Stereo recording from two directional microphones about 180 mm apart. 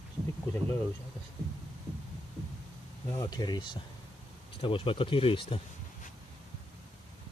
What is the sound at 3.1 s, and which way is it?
Speech, 20° left (ahead or behind).